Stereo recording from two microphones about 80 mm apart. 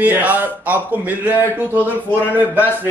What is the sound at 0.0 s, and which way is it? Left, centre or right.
A man's voice, right.